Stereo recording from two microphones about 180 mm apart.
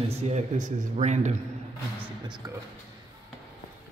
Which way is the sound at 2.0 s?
25° right (ahead or behind).